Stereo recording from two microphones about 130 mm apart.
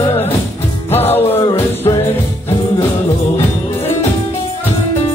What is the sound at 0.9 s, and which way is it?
Music, 15° left (ahead or behind).